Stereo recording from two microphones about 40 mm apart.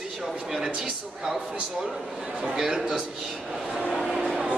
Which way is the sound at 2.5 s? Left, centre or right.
Centre.